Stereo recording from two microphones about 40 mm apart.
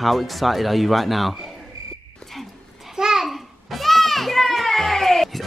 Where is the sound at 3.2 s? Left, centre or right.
Centre.